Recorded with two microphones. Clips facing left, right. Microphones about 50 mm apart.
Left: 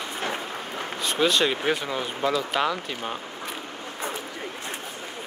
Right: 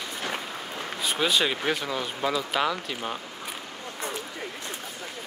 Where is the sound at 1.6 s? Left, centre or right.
Centre.